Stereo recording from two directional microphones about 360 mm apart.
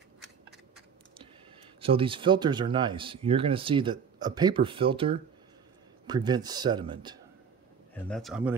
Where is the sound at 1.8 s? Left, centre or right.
Centre.